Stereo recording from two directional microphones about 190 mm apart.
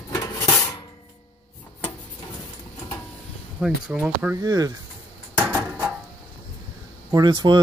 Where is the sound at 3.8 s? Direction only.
5° right (ahead or behind).